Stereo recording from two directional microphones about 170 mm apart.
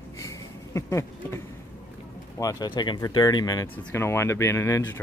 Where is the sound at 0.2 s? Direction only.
20° left (ahead or behind).